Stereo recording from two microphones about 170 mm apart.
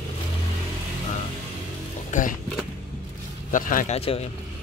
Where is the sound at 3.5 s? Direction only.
50° left (ahead or behind).